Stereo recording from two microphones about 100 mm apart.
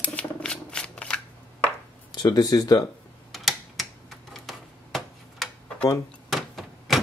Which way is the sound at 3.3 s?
Centre (ahead or behind).